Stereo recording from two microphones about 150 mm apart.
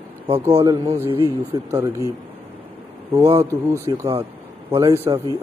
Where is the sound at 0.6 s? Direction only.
30° right (ahead or behind).